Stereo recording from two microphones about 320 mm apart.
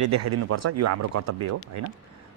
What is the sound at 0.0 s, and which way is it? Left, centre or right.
Speech, right.